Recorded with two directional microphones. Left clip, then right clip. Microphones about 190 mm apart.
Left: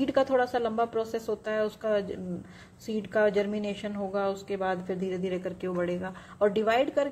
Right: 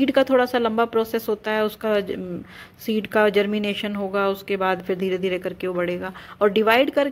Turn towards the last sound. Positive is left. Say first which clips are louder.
# right 8 dB
turn(degrees=-25)  # may be behind; listen again after turning